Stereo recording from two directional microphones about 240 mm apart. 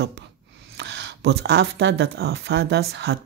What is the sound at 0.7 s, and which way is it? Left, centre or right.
Speech, right.